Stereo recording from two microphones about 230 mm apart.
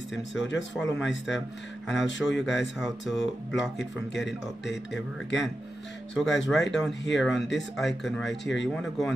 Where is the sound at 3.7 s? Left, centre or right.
Left.